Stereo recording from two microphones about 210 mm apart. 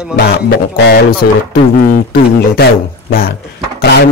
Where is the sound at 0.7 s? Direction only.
45° left (ahead or behind).